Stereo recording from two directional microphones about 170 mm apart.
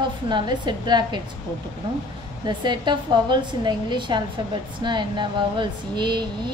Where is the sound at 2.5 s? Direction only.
25° right (ahead or behind).